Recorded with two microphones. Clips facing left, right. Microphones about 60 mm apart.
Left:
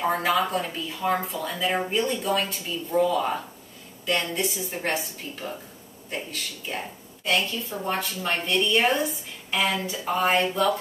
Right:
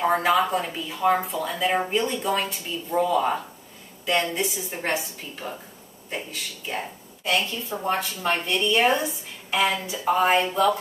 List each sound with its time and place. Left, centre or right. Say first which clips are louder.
0.0 s a man's voice: right 3 dB; centre